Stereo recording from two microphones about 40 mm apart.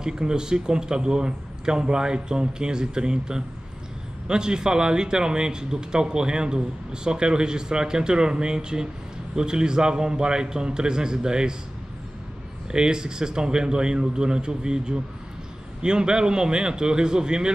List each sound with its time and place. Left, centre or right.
0.0 s speech: centre
12.7 s speech: centre